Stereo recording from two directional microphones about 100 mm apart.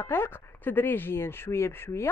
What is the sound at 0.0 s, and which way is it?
Speech, 25° left (ahead or behind).